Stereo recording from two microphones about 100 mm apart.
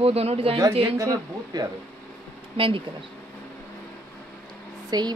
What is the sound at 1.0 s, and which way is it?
Speech, 35° right (ahead or behind).